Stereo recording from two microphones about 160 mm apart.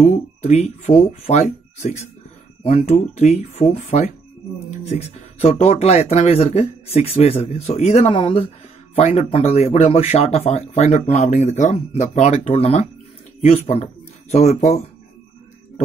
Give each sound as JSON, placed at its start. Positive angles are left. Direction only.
{"t": 0.0, "sound": "speech", "side_deg": 45}